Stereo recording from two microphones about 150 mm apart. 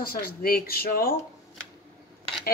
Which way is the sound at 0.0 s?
80° left.